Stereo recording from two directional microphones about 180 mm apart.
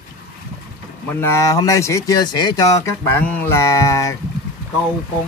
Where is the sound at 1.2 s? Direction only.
15° left (ahead or behind).